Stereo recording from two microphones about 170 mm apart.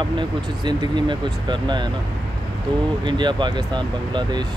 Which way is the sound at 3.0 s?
25° right (ahead or behind).